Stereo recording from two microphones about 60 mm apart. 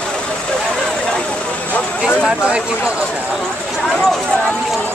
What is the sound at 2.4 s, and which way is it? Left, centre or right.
Speech, centre.